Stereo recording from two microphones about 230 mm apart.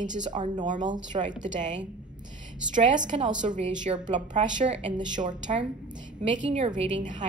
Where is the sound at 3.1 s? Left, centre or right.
Right.